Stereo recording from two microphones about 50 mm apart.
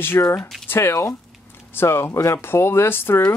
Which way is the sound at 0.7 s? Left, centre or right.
Left.